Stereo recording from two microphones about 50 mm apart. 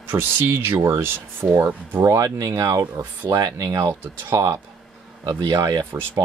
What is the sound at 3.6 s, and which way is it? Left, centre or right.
Speech, right.